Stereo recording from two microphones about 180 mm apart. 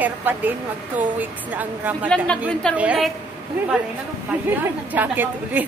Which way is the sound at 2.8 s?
5° right (ahead or behind).